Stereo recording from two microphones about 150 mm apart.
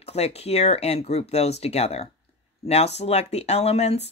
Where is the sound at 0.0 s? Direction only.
45° left (ahead or behind).